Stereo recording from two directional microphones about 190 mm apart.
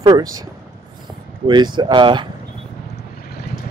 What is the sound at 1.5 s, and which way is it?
Speech, 20° right (ahead or behind).